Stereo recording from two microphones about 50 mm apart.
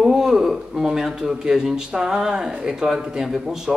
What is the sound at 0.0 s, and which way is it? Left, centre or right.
Speech, centre.